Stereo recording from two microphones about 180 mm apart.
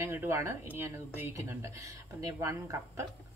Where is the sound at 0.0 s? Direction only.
15° right (ahead or behind).